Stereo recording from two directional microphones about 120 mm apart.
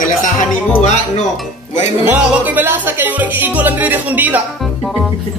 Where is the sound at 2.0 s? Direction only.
15° right (ahead or behind).